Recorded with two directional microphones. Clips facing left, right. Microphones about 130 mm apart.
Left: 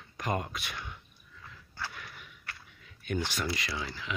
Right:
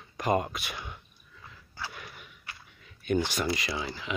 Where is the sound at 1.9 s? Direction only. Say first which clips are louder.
Right 2 dB; 20° right (ahead or behind).